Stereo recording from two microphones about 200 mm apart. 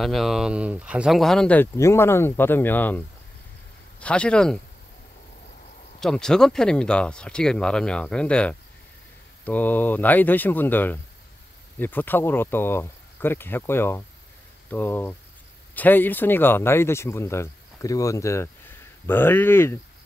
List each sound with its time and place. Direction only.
0.0 s speech: centre (ahead or behind)
4.0 s speech: 5° left (ahead or behind)
5.9 s speech: 5° left (ahead or behind)